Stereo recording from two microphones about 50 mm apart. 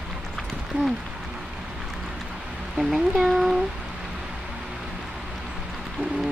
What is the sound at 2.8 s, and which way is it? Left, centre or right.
Speech, centre.